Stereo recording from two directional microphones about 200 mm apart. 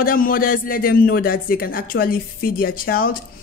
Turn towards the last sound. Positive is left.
turn(degrees=45)  # may be behind; listen again after turning